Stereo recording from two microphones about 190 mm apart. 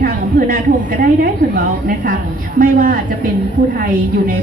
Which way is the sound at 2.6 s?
45° right (ahead or behind).